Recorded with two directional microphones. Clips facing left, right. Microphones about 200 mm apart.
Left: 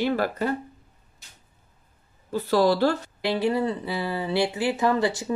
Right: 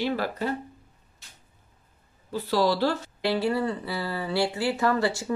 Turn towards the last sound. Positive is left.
turn(degrees=20)  # may be behind; listen again after turning